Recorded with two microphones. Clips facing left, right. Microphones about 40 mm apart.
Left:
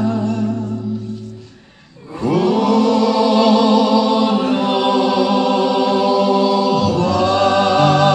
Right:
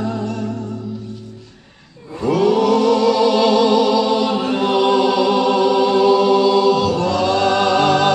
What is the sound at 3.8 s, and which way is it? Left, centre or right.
Music, centre.